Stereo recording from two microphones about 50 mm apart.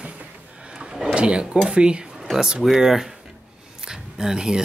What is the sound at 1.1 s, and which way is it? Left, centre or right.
Speech, centre.